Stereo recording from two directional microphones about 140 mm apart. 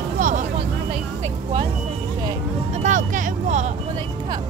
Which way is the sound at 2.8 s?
65° right (ahead or behind).